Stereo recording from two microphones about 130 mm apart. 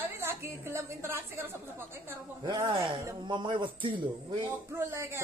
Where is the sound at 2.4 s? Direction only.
35° right (ahead or behind).